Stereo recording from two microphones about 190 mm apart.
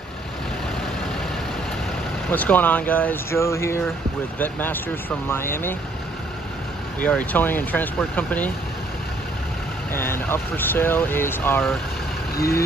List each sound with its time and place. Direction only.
2.3 s speech: 10° left (ahead or behind)
7.1 s speech: 10° left (ahead or behind)
9.9 s speech: 10° left (ahead or behind)